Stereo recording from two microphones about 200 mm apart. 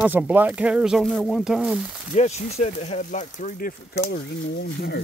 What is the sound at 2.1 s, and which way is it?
Speech, 35° left (ahead or behind).